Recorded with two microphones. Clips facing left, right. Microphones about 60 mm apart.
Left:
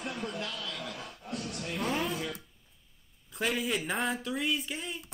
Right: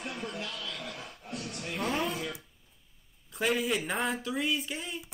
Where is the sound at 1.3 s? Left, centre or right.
Centre.